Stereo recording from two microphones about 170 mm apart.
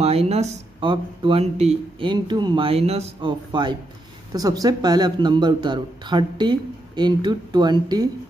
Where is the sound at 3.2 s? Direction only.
25° right (ahead or behind).